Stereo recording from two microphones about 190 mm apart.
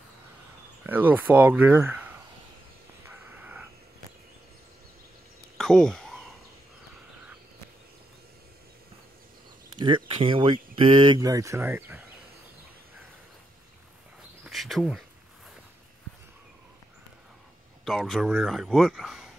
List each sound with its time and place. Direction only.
0.8 s speech: 10° right (ahead or behind)
3.1 s a sound: 10° right (ahead or behind)
5.6 s a sound: 5° left (ahead or behind)
9.8 s speech: 25° right (ahead or behind); by 12.0 s 10° right (ahead or behind)
14.4 s bird: centre (ahead or behind)
17.8 s speech: centre (ahead or behind)